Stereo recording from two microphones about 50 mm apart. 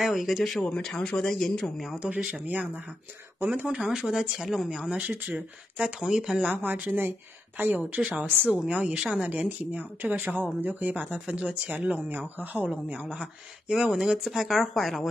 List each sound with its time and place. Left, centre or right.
0.0 s speech: centre
0.6 s speech: left
2.0 s a woman's voice: right
3.8 s speech: centre
4.9 s a woman's voice: right; by 6.5 s centre
6.5 s a woman's voice: right
11.0 s a woman's voice: right
12.1 s speech: right
13.1 s speech: centre